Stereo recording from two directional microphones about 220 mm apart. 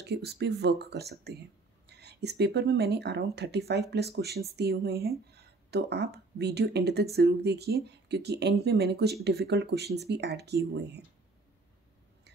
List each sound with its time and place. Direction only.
0.0 s speech: 50° right (ahead or behind)